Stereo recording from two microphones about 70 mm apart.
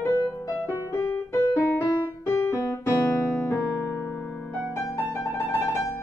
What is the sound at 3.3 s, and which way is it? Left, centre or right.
Keyboard, left.